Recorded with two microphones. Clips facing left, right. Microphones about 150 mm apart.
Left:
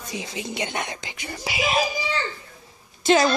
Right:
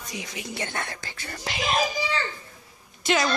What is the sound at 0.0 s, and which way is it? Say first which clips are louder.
A child's voice: left 4 dB; 25° left (ahead or behind).